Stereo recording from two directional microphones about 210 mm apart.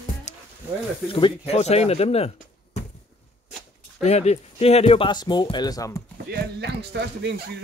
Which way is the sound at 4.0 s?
30° left (ahead or behind).